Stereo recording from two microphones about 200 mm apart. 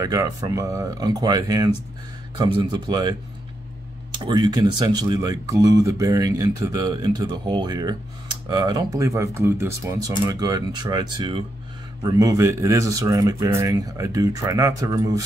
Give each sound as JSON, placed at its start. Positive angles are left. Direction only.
{"t": 0.0, "sound": "speech", "side_deg": -15}